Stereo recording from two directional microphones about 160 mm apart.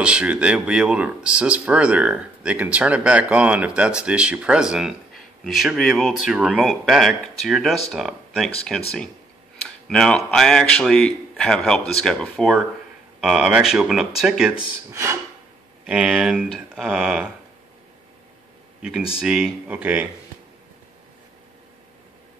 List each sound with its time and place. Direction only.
0.0 s speech: 5° right (ahead or behind)
14.9 s speech: 15° right (ahead or behind)
15.9 s speech: 5° right (ahead or behind)
18.8 s speech: 5° right (ahead or behind)